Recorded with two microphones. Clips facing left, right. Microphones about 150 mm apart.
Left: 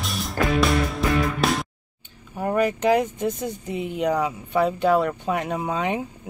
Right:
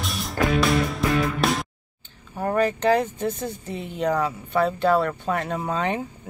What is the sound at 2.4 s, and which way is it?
Speech, 10° left (ahead or behind).